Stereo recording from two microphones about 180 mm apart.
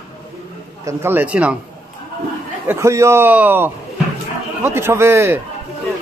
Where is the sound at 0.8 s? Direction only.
10° right (ahead or behind).